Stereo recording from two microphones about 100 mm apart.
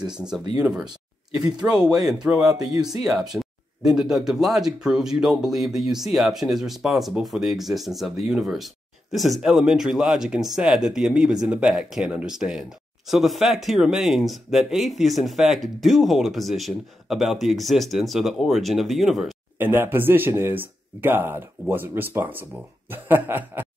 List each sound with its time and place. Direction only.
0.6 s speech: 10° right (ahead or behind)
2.5 s speech: 35° right (ahead or behind)
3.2 s speech: centre (ahead or behind)
19.6 s speech: 20° right (ahead or behind)